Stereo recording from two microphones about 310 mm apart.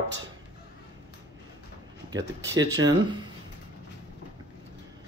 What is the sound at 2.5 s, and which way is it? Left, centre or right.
Speech, centre.